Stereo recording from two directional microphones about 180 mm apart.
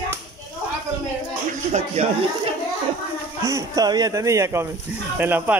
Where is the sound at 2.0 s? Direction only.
35° right (ahead or behind).